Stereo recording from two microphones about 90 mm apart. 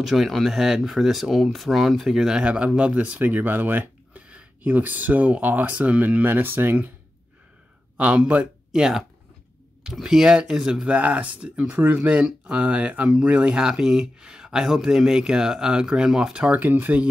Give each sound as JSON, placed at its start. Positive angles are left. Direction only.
{"t": 0.0, "sound": "speech", "side_deg": 0}
{"t": 8.0, "sound": "speech", "side_deg": -15}
{"t": 16.6, "sound": "speech", "side_deg": -20}